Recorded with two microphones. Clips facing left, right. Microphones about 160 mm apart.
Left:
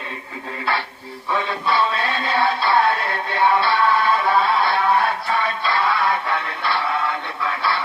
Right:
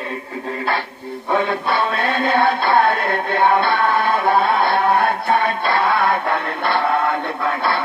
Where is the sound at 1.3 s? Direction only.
50° right (ahead or behind).